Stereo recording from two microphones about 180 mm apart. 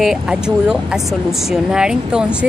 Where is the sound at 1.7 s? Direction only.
5° right (ahead or behind).